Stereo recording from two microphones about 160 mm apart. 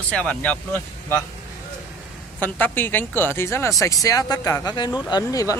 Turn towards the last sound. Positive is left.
turn(degrees=25)  # may be behind; listen again after turning